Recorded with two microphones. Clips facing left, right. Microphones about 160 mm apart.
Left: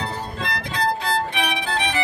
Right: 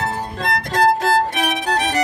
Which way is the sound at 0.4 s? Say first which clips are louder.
Right 8 dB; 45° right (ahead or behind).